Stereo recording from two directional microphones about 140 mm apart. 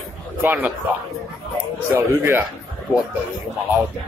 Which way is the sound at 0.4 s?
10° right (ahead or behind).